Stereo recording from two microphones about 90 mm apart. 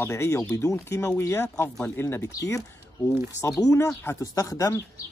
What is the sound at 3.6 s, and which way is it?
Speech, 35° left (ahead or behind).